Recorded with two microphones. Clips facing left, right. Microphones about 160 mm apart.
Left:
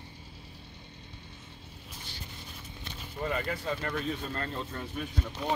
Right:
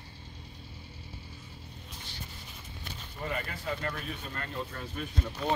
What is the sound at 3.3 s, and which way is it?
Speech, 25° left (ahead or behind).